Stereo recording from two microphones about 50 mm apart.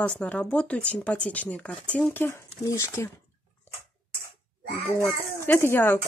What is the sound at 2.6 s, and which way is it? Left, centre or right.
Speech, left.